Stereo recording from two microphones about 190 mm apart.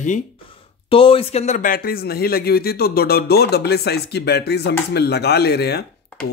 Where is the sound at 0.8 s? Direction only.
30° left (ahead or behind); by 5.9 s 60° left (ahead or behind).